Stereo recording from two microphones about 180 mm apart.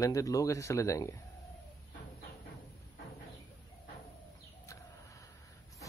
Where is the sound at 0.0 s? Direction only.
20° left (ahead or behind).